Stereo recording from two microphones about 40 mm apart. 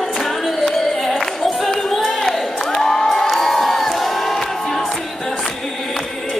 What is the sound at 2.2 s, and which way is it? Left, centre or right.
Crowd, centre.